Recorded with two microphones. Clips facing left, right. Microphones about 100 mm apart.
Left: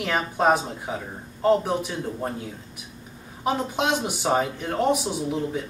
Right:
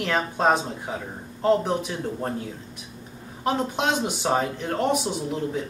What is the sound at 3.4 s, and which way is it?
Speech, 5° left (ahead or behind).